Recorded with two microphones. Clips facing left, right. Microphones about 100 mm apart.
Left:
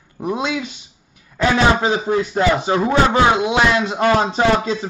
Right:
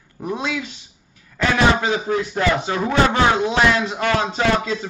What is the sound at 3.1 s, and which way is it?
Speech, 15° left (ahead or behind).